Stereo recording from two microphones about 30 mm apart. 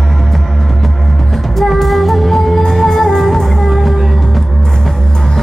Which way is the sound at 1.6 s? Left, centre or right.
Centre.